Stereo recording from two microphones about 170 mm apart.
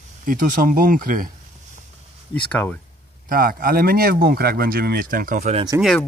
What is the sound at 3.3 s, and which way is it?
Speech, 60° right (ahead or behind).